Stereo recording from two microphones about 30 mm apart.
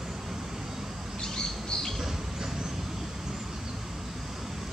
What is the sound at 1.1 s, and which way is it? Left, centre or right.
Squawk, centre.